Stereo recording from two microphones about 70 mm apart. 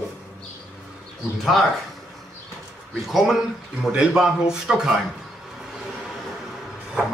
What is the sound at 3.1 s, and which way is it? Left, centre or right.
A man's voice, centre.